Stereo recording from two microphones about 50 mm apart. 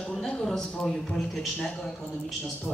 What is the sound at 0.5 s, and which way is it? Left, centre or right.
Speech, centre.